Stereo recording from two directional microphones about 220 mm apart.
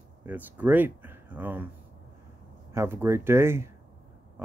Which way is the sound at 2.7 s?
10° right (ahead or behind).